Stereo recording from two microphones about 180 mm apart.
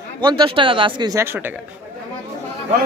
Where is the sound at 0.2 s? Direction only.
25° right (ahead or behind).